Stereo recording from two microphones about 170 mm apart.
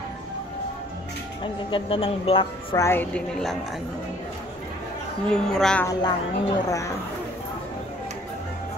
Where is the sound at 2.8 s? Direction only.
15° left (ahead or behind).